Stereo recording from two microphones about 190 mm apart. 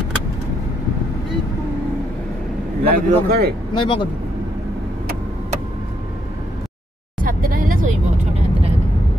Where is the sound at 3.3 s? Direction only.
55° right (ahead or behind).